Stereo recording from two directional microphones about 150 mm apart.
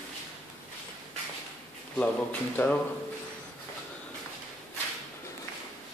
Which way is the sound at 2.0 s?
10° left (ahead or behind).